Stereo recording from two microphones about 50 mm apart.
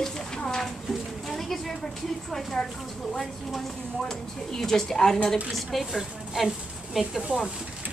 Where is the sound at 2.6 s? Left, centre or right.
Centre.